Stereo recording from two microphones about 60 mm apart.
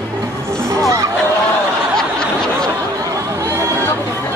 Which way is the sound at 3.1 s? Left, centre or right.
Right.